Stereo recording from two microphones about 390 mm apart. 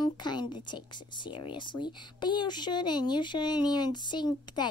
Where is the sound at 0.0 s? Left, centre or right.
Centre.